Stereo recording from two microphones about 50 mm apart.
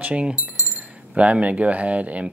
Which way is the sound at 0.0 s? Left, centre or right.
Right.